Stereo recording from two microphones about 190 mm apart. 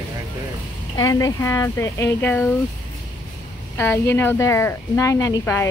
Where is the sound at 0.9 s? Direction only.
15° left (ahead or behind).